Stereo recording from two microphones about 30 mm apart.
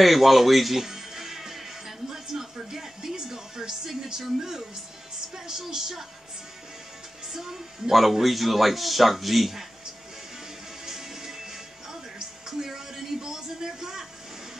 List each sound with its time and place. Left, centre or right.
0.0 s music: centre
5.7 s a woman's voice: centre
7.9 s a man's voice: centre
10.9 s music: centre